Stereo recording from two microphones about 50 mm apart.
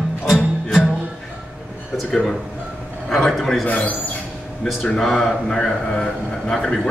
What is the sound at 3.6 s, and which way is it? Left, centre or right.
Speech, left.